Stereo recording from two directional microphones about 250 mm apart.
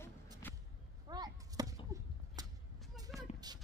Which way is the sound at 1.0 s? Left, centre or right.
Centre.